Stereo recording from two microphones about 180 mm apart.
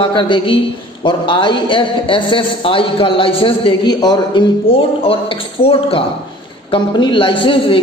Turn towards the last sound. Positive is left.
turn(degrees=30)  # may be behind; listen again after turning